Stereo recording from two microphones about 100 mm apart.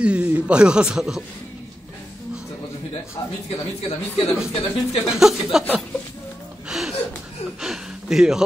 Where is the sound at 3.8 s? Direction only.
75° left (ahead or behind).